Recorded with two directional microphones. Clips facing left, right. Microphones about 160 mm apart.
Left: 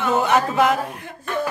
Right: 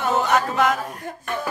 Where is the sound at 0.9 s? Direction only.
40° right (ahead or behind).